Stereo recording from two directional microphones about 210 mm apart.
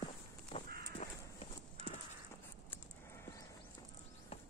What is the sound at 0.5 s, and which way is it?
Crow, 25° left (ahead or behind).